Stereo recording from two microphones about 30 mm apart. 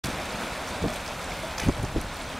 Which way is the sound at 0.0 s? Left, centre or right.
Centre.